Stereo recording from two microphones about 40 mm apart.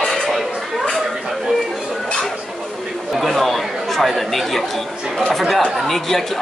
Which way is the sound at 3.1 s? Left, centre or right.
Centre.